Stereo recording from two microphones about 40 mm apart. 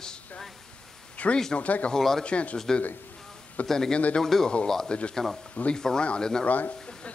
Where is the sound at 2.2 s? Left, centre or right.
Left.